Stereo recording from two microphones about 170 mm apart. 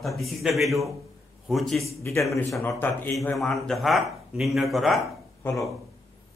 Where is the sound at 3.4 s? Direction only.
Centre (ahead or behind).